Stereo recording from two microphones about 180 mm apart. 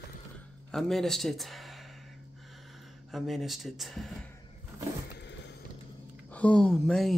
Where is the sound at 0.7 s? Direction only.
Centre (ahead or behind).